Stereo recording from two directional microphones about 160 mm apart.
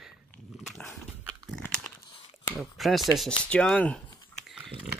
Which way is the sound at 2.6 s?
Centre (ahead or behind).